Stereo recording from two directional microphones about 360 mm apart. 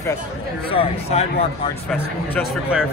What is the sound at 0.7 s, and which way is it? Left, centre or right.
Speech, centre.